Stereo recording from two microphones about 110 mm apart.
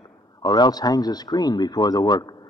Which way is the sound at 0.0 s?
40° left (ahead or behind).